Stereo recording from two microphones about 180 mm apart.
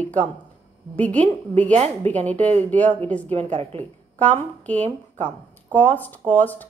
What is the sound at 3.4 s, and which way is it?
Speech, 35° right (ahead or behind).